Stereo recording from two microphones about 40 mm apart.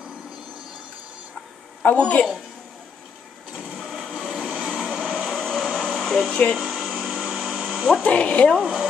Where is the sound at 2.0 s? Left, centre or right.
Left.